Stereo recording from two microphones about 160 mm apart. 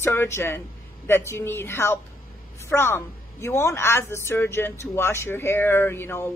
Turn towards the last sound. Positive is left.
turn(degrees=15)  # may be behind; listen again after turning